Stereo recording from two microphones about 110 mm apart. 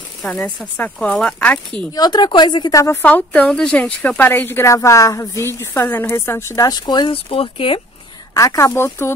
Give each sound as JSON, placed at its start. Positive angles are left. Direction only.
{"t": 0.2, "sound": "speech", "side_deg": 0}
{"t": 2.0, "sound": "a woman's voice", "side_deg": 40}
{"t": 2.8, "sound": "speech", "side_deg": 25}
{"t": 3.1, "sound": "speech", "side_deg": 15}
{"t": 5.6, "sound": "speech", "side_deg": 20}
{"t": 7.2, "sound": "speech", "side_deg": 55}
{"t": 8.4, "sound": "speech", "side_deg": 30}